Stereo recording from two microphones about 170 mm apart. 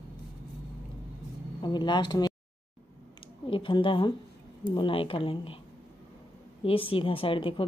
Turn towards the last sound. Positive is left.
turn(degrees=30)  # may be behind; listen again after turning